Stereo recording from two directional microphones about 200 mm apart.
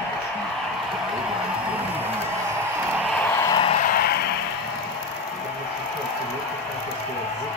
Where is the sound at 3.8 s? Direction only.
45° left (ahead or behind).